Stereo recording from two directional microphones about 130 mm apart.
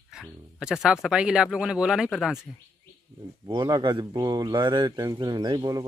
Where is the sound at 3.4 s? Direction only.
35° right (ahead or behind).